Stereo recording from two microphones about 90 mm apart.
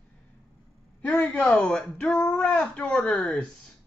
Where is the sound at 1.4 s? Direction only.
10° left (ahead or behind).